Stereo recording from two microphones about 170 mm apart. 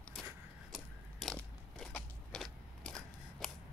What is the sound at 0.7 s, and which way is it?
Biting, centre (ahead or behind).